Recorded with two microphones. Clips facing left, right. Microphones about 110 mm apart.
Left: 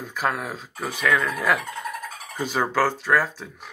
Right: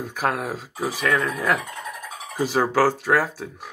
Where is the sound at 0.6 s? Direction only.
5° right (ahead or behind).